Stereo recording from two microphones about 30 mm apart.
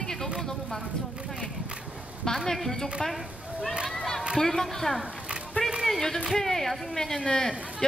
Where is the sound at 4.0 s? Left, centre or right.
Centre.